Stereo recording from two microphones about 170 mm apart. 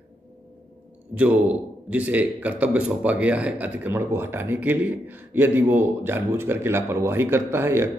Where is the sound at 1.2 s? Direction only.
10° right (ahead or behind).